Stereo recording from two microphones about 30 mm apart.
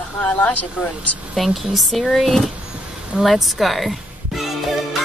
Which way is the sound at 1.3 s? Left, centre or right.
Centre.